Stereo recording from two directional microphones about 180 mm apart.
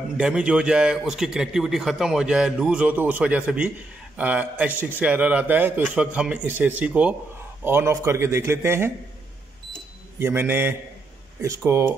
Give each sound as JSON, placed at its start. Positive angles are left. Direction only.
{"t": 0.2, "sound": "a man's voice", "side_deg": -5}
{"t": 10.1, "sound": "a man's voice", "side_deg": -15}